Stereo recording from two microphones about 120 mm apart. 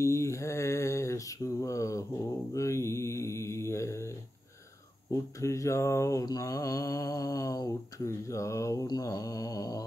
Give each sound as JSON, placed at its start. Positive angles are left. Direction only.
{"t": 0.0, "sound": "mantra", "side_deg": 25}
{"t": 5.1, "sound": "mantra", "side_deg": 25}